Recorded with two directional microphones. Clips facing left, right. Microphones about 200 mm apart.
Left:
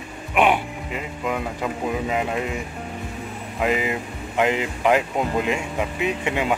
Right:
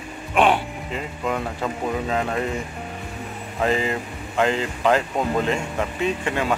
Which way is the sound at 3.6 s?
10° left (ahead or behind).